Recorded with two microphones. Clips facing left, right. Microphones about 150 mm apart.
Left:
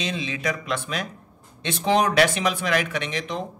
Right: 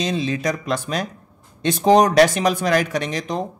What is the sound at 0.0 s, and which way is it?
Speech, 40° right (ahead or behind).